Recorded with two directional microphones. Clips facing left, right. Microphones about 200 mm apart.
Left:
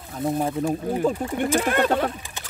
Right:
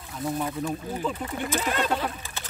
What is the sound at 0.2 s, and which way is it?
Speech, 45° left (ahead or behind).